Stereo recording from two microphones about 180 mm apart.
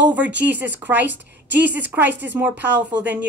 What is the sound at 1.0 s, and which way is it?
Speech, 80° right.